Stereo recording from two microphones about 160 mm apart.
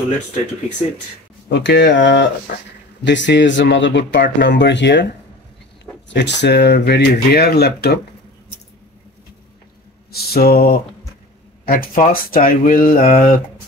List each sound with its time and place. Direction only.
1.5 s speech: 90° left
2.5 s speech: 65° left (ahead or behind)
3.0 s speech: 90° left
10.1 s mantra: 75° left (ahead or behind)
11.6 s speech: 65° left (ahead or behind)